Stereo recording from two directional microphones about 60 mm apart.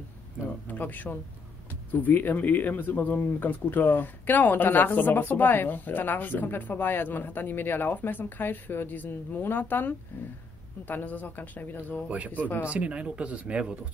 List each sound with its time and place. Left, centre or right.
0.7 s speech: left
12.6 s speech: right